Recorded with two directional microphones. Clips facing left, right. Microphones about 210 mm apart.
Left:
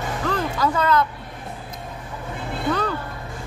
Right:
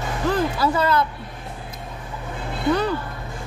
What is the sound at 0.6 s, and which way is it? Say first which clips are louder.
Chime: left 4 dB; 10° right (ahead or behind).